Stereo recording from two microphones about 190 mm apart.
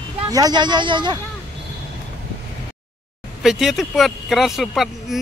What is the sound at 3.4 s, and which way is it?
Speech, centre (ahead or behind).